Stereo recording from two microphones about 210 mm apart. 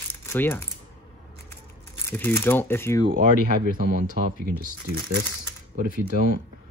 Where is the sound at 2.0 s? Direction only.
10° left (ahead or behind).